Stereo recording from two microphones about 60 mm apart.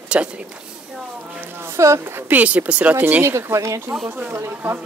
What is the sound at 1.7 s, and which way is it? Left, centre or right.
Speech, right.